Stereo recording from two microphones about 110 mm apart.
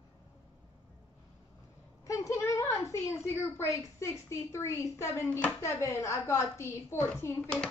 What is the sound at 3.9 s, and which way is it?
A woman's voice, 25° left (ahead or behind).